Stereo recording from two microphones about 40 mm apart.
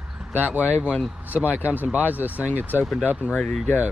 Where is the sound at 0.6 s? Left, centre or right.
Left.